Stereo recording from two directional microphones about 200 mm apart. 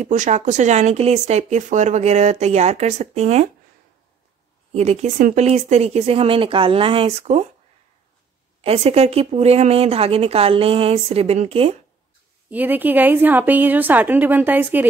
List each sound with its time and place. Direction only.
0.0 s speech: 35° right (ahead or behind)
4.7 s speech: 35° right (ahead or behind)
8.5 s speech: 30° right (ahead or behind)
12.4 s a woman's voice: 10° right (ahead or behind)